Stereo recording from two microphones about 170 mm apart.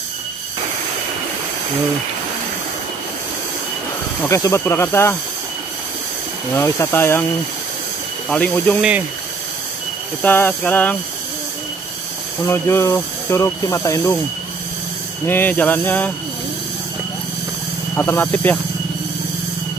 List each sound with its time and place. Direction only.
4.2 s speech: 15° left (ahead or behind)
6.5 s speech: 15° left (ahead or behind)
8.3 s speech: 5° left (ahead or behind)
10.2 s speech: 10° left (ahead or behind)
12.4 s speech: 15° left (ahead or behind)
15.2 s speech: 10° left (ahead or behind)
17.9 s speech: 15° left (ahead or behind)